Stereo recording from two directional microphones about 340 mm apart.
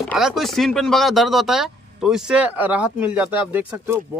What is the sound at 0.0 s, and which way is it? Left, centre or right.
Speech, centre.